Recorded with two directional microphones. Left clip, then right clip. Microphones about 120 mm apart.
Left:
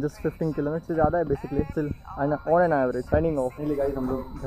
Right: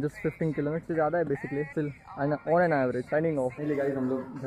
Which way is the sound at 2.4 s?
20° right (ahead or behind).